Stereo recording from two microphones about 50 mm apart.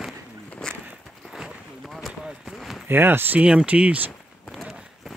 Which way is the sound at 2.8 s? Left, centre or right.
Right.